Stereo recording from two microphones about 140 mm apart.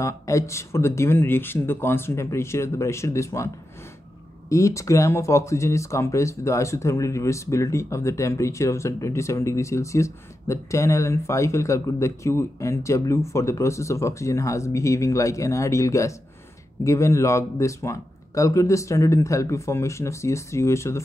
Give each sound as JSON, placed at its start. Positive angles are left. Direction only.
{"t": 0.0, "sound": "speech", "side_deg": 20}
{"t": 4.5, "sound": "speech", "side_deg": 20}